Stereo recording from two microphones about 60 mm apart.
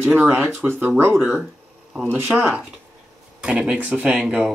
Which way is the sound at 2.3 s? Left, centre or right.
Right.